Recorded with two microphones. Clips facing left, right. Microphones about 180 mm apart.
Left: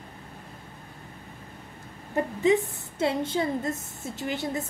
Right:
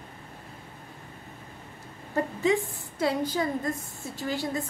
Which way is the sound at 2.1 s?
20° left (ahead or behind).